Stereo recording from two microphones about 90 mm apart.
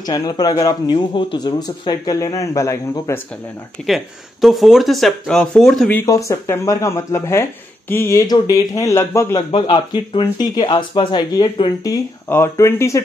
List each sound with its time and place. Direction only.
0.0 s speech: 45° left (ahead or behind)
3.8 s speech: centre (ahead or behind)
6.0 s speech: 35° left (ahead or behind)
8.3 s speech: 40° left (ahead or behind)
9.5 s speech: 70° left (ahead or behind)
10.4 s speech: 50° left (ahead or behind)
12.3 s speech: 30° left (ahead or behind)